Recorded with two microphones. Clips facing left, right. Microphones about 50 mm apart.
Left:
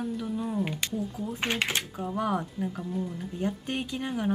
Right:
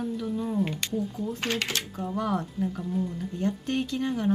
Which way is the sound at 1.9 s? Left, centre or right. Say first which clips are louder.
Right 2 dB; centre.